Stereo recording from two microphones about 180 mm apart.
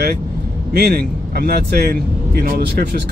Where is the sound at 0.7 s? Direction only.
60° right (ahead or behind).